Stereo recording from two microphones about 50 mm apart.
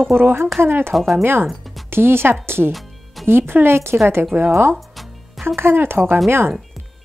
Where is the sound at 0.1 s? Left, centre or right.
Right.